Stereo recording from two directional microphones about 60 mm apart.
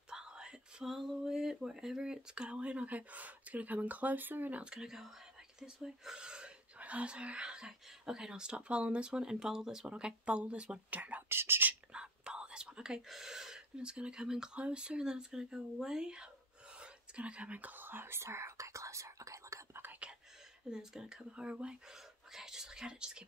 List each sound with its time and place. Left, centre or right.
0.1 s whispering: centre
0.8 s speech: centre; by 4.6 s right
4.6 s speech: centre
10.9 s speech: right
11.2 s speech: right
11.9 s speech: centre
16.8 s whispering: centre; by 19.6 s right
19.7 s whispering: right
20.7 s speech: centre
22.3 s whispering: centre